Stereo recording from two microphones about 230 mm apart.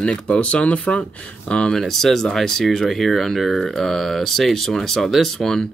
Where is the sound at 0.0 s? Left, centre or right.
Centre.